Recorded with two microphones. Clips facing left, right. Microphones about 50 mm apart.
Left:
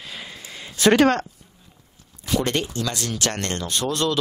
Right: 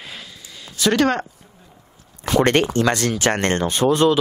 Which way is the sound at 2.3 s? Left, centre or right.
Right.